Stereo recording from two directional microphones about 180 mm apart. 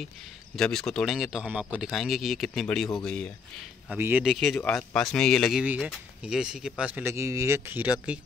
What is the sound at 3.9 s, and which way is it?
Speech, 15° right (ahead or behind).